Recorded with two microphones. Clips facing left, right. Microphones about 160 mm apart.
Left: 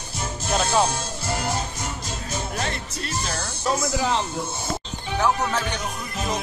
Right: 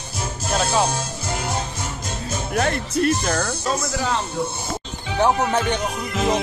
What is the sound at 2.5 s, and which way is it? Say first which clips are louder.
Speech: right 8 dB; 55° right (ahead or behind).